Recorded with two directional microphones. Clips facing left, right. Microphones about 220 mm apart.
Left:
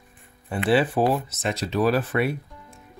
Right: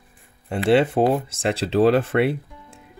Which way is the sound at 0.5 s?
25° right (ahead or behind).